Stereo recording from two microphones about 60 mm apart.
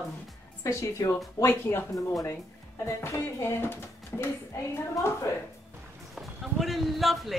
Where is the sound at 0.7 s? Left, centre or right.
Left.